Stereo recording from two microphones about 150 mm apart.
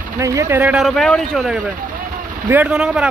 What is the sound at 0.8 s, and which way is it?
A man's voice, 5° left (ahead or behind).